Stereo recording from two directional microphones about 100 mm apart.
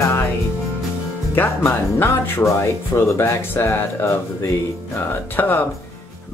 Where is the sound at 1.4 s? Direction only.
25° left (ahead or behind).